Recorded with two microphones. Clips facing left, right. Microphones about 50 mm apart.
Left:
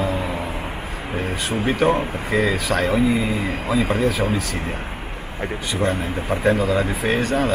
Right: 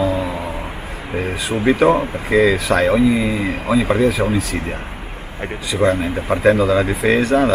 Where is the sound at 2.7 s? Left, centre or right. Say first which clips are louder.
Right 3 dB; right.